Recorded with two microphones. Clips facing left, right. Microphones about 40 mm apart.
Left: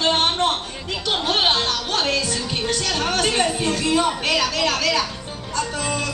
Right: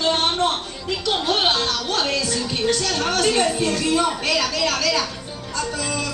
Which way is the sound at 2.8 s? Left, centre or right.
Centre.